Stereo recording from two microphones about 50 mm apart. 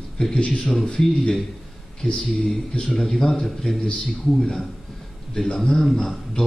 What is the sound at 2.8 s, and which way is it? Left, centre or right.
A man's voice, centre.